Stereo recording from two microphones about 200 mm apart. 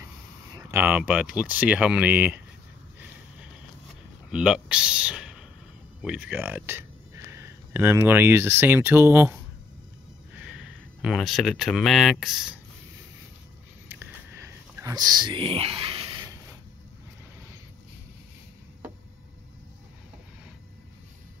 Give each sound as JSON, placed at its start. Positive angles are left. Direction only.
{"t": 0.6, "sound": "speech", "side_deg": -15}
{"t": 4.3, "sound": "speech", "side_deg": -5}
{"t": 10.4, "sound": "speech", "side_deg": -5}
{"t": 14.4, "sound": "whispering", "side_deg": -15}